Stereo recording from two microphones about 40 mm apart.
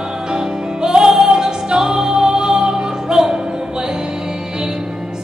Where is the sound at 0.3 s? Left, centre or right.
Centre.